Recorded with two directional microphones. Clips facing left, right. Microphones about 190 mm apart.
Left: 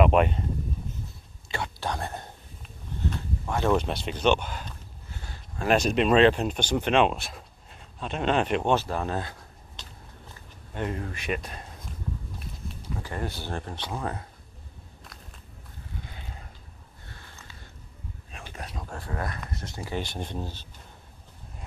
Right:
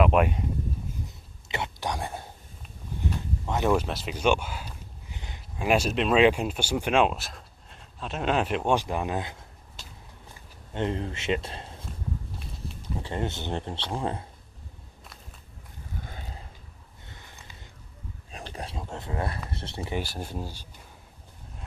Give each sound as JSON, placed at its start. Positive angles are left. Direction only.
{"t": 0.0, "sound": "speech", "side_deg": -5}
{"t": 1.5, "sound": "whispering", "side_deg": -20}
{"t": 3.0, "sound": "a sound", "side_deg": -15}
{"t": 3.7, "sound": "speech", "side_deg": -5}
{"t": 8.7, "sound": "speech", "side_deg": -15}
{"t": 10.7, "sound": "speech", "side_deg": -25}
{"t": 13.0, "sound": "speech", "side_deg": -25}
{"t": 16.0, "sound": "a sound", "side_deg": -45}
{"t": 17.1, "sound": "a sound", "side_deg": -15}
{"t": 18.5, "sound": "a sound", "side_deg": -30}
{"t": 19.5, "sound": "speech", "side_deg": -30}
{"t": 19.9, "sound": "speech", "side_deg": -5}